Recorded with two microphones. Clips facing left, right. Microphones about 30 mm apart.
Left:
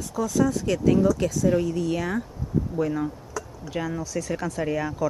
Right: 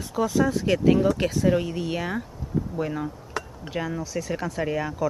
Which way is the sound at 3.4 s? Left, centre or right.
Right.